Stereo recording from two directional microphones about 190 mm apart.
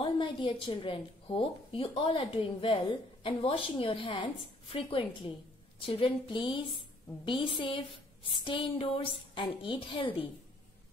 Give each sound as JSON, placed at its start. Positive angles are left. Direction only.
{"t": 0.0, "sound": "a woman's voice", "side_deg": 25}